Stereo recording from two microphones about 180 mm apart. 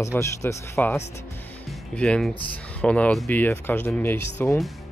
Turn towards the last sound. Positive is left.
turn(degrees=10)  # may be behind; listen again after turning